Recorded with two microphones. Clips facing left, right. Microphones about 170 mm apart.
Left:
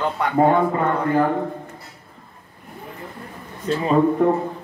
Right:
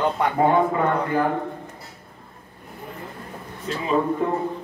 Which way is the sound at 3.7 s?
40° left (ahead or behind).